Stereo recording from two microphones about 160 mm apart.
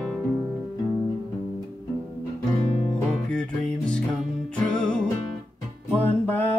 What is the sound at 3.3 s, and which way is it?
Music, 5° left (ahead or behind).